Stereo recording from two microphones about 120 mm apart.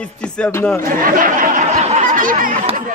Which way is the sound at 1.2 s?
90° right.